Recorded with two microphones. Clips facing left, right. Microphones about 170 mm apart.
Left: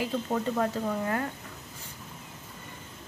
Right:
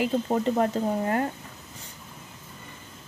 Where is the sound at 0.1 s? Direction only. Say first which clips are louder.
Right 5 dB; 30° right (ahead or behind).